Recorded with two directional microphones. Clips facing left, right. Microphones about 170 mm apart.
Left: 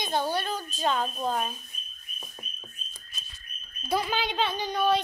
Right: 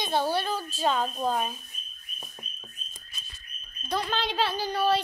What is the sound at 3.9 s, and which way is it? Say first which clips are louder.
A child's voice: left 1 dB; 5° left (ahead or behind).